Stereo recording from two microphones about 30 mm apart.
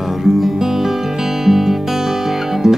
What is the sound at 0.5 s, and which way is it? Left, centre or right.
Music, centre.